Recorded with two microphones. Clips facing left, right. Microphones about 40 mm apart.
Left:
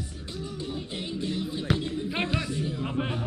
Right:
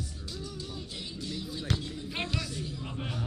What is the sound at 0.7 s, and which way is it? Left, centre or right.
Music, left.